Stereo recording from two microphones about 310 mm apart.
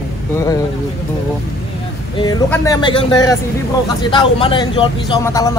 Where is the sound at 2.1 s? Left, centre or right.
Centre.